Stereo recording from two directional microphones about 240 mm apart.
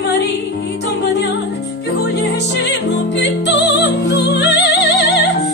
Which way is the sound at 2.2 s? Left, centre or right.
Left.